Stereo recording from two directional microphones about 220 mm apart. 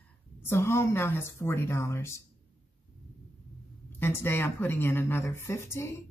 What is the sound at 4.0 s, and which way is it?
Speech, 10° left (ahead or behind).